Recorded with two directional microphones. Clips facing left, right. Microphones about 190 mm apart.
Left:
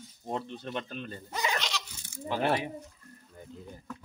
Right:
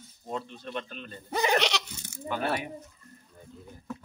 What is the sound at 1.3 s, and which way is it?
Speech, 65° right (ahead or behind).